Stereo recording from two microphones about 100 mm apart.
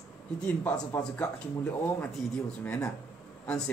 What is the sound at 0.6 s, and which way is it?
A man's voice, 20° left (ahead or behind).